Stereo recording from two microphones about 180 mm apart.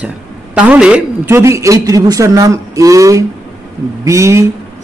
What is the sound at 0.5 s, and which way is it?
A woman's voice, 5° right (ahead or behind).